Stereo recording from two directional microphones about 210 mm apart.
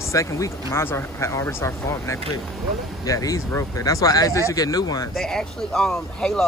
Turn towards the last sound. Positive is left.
turn(degrees=5)  # may be behind; listen again after turning